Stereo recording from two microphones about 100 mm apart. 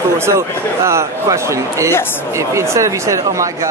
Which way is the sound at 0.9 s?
30° right (ahead or behind).